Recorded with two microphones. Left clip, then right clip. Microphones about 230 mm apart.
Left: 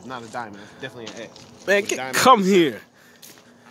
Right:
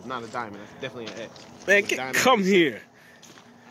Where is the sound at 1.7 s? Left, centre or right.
Centre.